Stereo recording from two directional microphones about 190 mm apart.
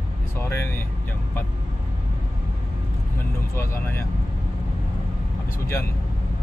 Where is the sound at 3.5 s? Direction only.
15° left (ahead or behind).